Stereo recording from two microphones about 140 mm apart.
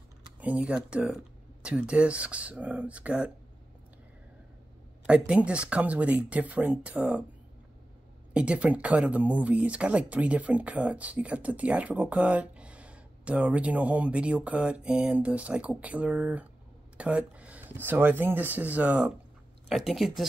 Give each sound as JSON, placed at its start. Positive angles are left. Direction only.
{"t": 0.4, "sound": "speech", "side_deg": -10}
{"t": 5.0, "sound": "speech", "side_deg": -10}
{"t": 8.3, "sound": "speech", "side_deg": -10}